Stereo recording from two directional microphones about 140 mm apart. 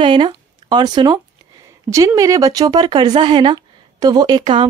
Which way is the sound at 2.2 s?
25° right (ahead or behind).